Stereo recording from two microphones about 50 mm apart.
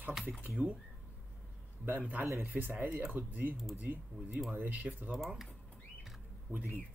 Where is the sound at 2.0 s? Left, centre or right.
Right.